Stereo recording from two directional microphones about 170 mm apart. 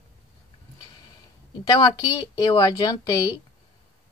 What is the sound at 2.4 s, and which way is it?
Speech, 25° left (ahead or behind).